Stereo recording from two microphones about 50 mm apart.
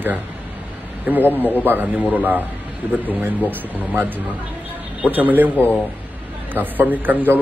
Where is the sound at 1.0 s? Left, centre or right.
Right.